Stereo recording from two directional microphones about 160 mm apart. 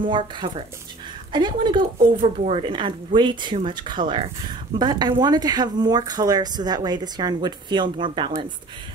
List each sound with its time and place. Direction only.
0.0 s speech: 30° right (ahead or behind)